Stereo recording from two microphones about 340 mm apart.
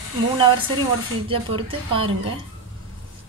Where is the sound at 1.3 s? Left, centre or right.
Centre.